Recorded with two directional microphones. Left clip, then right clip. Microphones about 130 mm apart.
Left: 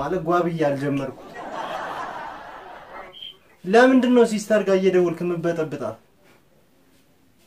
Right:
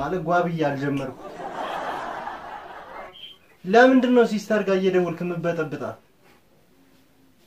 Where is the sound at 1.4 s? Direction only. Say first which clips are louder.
Even; centre (ahead or behind).